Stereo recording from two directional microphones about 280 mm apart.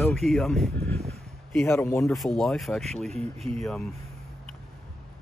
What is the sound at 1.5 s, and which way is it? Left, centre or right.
Speech, centre.